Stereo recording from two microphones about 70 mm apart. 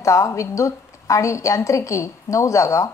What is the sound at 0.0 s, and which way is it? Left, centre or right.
A woman's voice, left.